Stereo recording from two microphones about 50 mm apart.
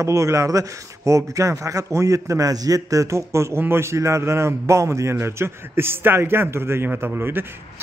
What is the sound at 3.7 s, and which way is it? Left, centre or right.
A man's voice, right.